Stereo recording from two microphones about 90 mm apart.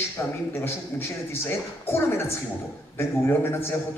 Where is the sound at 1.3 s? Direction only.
25° left (ahead or behind).